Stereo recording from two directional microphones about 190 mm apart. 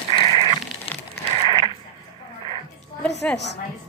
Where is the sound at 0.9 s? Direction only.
30° left (ahead or behind).